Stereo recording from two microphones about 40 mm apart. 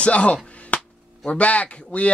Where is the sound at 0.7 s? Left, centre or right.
Left.